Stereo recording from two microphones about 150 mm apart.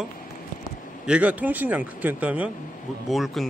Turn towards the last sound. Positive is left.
turn(degrees=0)  # may be behind; listen again after turning